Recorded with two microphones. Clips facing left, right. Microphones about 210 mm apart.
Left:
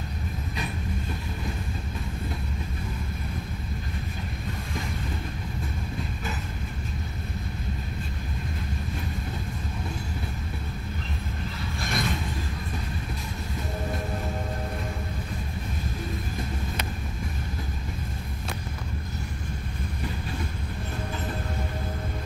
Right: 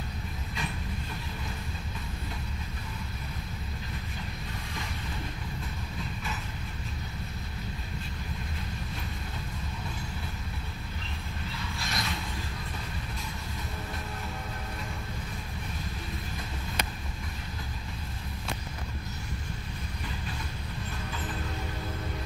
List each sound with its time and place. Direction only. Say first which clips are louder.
11.8 s mechanisms: left 7 dB; 50° left (ahead or behind)